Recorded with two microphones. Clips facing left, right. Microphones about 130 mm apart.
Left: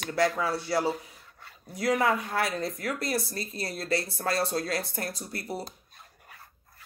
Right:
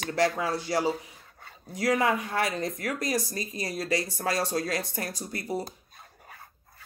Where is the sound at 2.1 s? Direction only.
20° right (ahead or behind).